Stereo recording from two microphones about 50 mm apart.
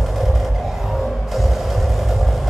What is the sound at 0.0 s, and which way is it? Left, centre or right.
Music, centre.